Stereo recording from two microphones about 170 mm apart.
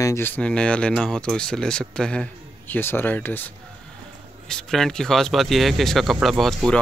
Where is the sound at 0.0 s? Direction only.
15° left (ahead or behind).